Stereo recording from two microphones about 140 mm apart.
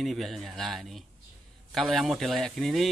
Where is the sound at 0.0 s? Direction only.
Centre (ahead or behind).